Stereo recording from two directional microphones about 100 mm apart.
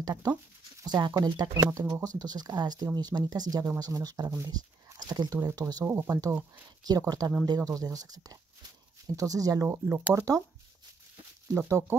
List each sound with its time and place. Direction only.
0.0 s speech: 40° right (ahead or behind)
5.9 s speech: 25° right (ahead or behind)
7.0 s speech: 40° right (ahead or behind)
9.7 s speech: 20° right (ahead or behind)
11.5 s speech: 30° right (ahead or behind)